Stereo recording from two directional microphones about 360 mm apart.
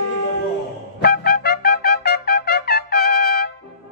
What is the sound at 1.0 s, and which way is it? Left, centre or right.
Trumpet, left.